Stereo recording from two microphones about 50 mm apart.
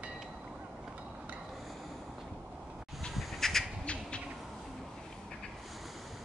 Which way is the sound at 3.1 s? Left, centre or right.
Centre.